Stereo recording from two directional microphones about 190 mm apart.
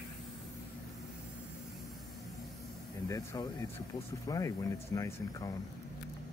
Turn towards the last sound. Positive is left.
turn(degrees=20)  # may be behind; listen again after turning